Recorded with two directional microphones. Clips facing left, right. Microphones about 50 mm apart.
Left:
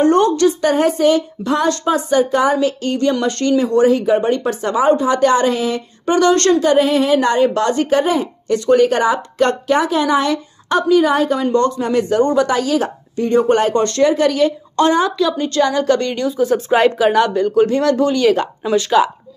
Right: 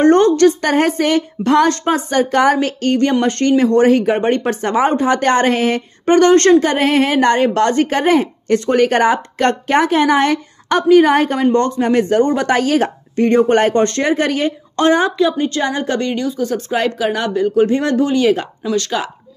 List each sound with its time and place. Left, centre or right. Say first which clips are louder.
0.0 s a woman's voice: right 3 dB; right; by 16.2 s centre
16.2 s speech: left 3 dB; centre
17.6 s speech: left 1 dB; right
18.6 s speech: left 2 dB; centre